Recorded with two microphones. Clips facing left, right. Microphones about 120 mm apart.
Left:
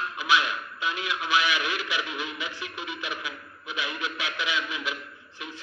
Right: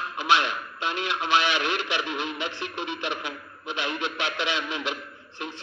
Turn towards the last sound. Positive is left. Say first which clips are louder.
# right 2 dB
turn(degrees=-30)  # may be behind; listen again after turning